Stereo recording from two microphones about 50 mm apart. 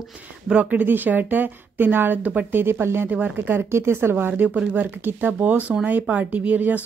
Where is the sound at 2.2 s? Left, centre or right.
Right.